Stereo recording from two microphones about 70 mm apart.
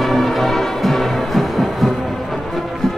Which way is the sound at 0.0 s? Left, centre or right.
Centre.